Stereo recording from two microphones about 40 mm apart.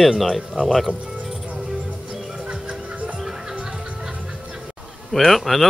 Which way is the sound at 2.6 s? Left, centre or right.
Right.